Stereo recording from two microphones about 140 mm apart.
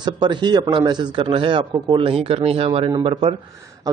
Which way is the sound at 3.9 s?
25° right (ahead or behind).